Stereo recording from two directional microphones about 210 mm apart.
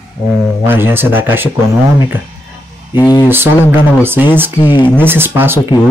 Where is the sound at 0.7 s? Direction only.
10° right (ahead or behind).